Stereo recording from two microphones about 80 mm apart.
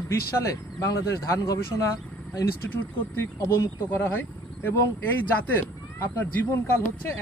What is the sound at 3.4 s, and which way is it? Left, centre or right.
Speech, left.